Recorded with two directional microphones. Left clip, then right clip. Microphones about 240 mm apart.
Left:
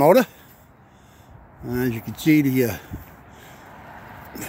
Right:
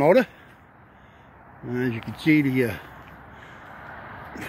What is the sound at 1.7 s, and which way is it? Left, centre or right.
Speech, centre.